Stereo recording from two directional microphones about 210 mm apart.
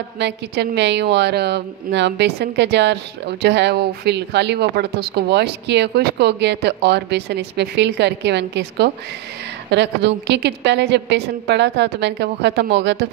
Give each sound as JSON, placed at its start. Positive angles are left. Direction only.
{"t": 0.2, "sound": "a woman's voice", "side_deg": -55}